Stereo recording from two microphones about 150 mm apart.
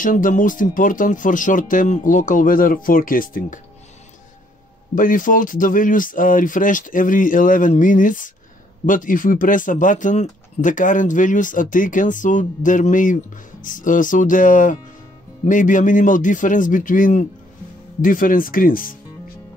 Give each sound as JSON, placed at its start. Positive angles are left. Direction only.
{"t": 0.0, "sound": "speech", "side_deg": 65}
{"t": 4.9, "sound": "speech", "side_deg": 65}